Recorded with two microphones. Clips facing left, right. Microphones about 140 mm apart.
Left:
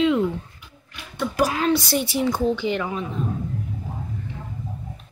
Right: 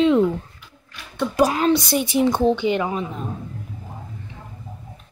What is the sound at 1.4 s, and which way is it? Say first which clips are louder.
Speech: right 3 dB; 25° right (ahead or behind).